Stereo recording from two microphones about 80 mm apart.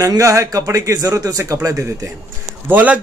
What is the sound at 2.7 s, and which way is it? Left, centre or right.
Speech, centre.